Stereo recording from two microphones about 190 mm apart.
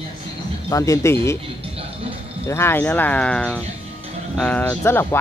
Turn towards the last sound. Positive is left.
turn(degrees=10)  # may be behind; listen again after turning